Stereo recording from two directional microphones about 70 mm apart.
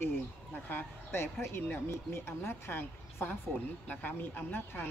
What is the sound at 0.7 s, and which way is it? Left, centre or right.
Speech, left.